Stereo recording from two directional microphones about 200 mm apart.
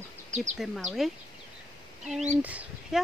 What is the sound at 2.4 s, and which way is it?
Speech, 5° right (ahead or behind).